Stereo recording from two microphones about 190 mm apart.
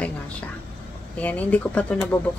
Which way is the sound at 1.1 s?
10° left (ahead or behind).